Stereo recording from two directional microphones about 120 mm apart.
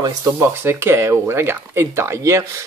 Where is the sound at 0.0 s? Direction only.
25° right (ahead or behind).